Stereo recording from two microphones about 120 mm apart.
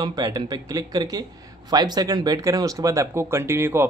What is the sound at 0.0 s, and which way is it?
Speech, 30° right (ahead or behind).